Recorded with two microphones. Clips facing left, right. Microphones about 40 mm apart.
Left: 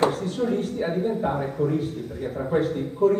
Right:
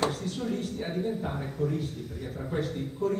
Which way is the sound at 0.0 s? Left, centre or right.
Left.